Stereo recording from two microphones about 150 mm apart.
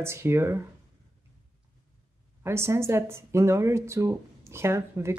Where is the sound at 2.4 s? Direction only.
15° right (ahead or behind).